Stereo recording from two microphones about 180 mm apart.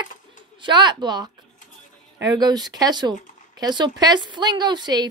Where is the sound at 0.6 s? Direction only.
25° right (ahead or behind).